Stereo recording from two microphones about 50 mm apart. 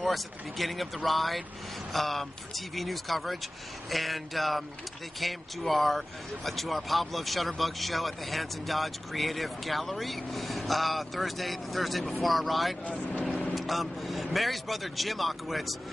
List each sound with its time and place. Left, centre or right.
0.0 s speech: centre
12.8 s speech: left
13.2 s speech: centre